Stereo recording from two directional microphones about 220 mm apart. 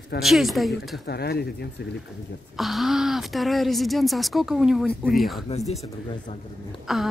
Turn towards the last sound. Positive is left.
turn(degrees=0)  # may be behind; listen again after turning